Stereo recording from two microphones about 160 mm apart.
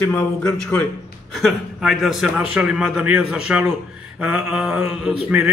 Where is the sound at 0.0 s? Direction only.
15° left (ahead or behind).